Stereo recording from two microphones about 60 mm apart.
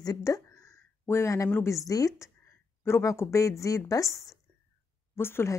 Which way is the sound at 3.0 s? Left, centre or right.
Left.